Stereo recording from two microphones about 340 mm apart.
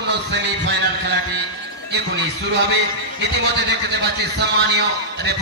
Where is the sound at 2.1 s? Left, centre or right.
Right.